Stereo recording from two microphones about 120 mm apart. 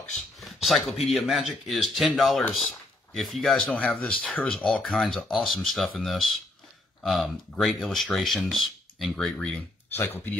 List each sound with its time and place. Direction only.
0.1 s speech: centre (ahead or behind)
3.7 s speech: 10° left (ahead or behind)
9.9 s speech: 15° left (ahead or behind)